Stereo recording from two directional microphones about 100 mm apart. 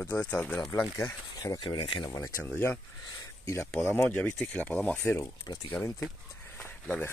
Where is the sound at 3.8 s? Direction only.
20° left (ahead or behind).